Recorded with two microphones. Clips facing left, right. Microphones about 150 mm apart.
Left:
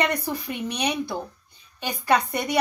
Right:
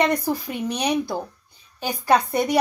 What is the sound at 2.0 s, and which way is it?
Speech, 35° right (ahead or behind).